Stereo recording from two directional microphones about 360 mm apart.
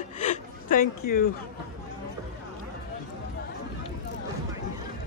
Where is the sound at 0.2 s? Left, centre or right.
Left.